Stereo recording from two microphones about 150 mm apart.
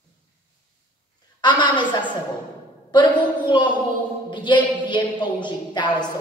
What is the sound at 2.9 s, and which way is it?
A woman's voice, 30° left (ahead or behind).